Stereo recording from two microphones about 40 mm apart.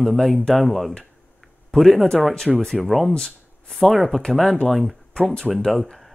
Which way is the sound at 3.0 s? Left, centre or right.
Centre.